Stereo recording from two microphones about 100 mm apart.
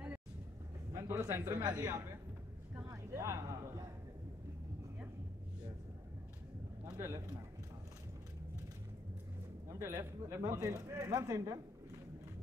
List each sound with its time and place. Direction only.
0.9 s a man's voice: 30° right (ahead or behind)
2.8 s a sound: 30° right (ahead or behind)
7.0 s a man's voice: 25° right (ahead or behind)
9.7 s speech: 25° right (ahead or behind)